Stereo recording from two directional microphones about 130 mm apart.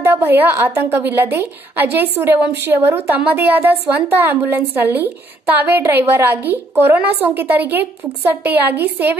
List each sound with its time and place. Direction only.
0.0 s a woman's voice: 15° right (ahead or behind)